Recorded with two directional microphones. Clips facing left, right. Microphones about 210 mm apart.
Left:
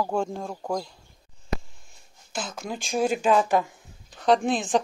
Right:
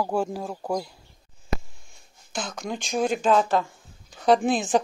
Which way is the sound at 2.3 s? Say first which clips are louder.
Right 1 dB; 5° left (ahead or behind).